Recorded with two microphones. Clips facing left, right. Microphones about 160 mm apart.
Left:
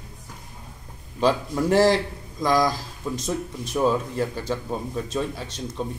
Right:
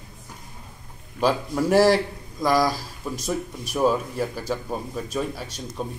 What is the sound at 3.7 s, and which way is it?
Speech, 10° right (ahead or behind).